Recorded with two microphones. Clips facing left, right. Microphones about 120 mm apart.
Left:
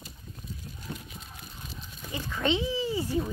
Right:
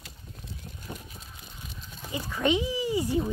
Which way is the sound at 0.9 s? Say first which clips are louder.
Left 1 dB; 15° right (ahead or behind).